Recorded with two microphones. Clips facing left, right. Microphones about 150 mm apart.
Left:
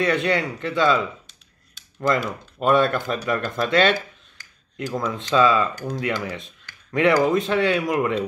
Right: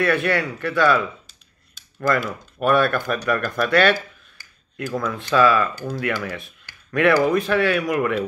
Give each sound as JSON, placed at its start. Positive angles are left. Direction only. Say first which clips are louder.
{"t": 0.0, "sound": "speech", "louder": "right 1 dB", "side_deg": 20}